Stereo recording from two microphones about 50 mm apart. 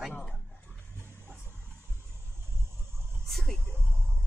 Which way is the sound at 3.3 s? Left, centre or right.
Centre.